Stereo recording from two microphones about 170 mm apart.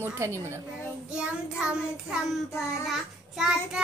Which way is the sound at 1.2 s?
5° right (ahead or behind).